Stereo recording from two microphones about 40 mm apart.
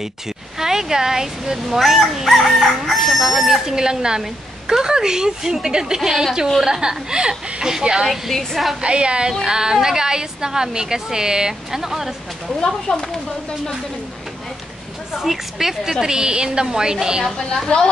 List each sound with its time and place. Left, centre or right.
0.6 s a woman's voice: centre
8.1 s a woman's voice: centre
8.8 s a woman's voice: right; by 12.1 s centre
12.5 s speech: left
15.2 s a woman's voice: centre
17.4 s a woman's voice: centre